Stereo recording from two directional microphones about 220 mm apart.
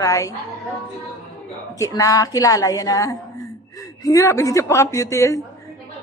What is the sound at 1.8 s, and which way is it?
A woman's voice, 15° left (ahead or behind).